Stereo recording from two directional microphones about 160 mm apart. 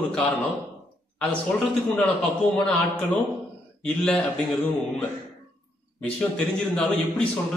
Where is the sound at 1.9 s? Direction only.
5° left (ahead or behind).